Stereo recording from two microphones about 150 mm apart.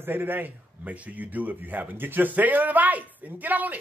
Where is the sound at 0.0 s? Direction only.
15° right (ahead or behind).